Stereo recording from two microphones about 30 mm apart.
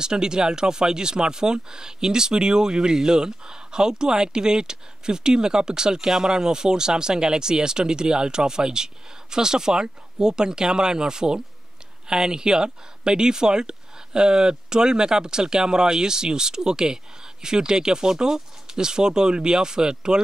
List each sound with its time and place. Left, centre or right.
0.0 s speech: right